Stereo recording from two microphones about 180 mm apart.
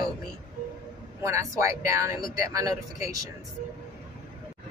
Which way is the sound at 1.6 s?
15° right (ahead or behind).